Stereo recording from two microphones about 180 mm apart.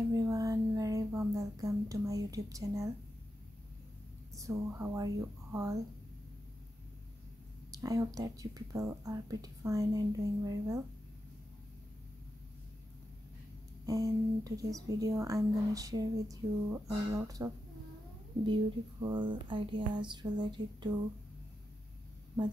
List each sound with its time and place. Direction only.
0.1 s a sound: 20° right (ahead or behind)
4.4 s speech: 15° right (ahead or behind)
7.7 s speech: 20° right (ahead or behind)
13.8 s speech: 20° right (ahead or behind)